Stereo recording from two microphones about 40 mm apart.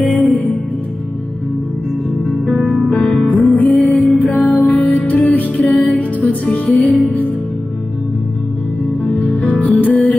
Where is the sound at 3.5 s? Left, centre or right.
Left.